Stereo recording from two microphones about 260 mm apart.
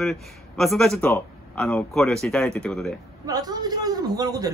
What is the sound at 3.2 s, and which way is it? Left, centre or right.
A man's voice, centre.